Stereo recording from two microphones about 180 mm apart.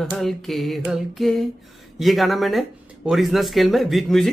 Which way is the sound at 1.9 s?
Centre (ahead or behind).